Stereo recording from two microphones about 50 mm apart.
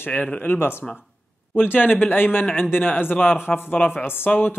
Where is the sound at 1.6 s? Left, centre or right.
Left.